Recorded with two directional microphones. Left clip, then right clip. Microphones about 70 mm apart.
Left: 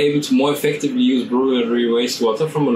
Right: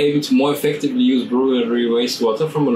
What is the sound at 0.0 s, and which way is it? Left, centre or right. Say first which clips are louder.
Speech: even; centre.